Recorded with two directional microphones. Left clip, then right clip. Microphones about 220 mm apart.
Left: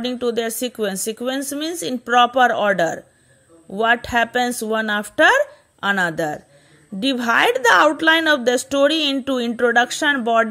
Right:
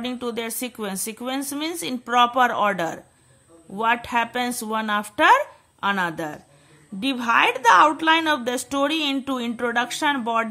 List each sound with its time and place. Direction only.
0.0 s a woman's voice: 15° left (ahead or behind)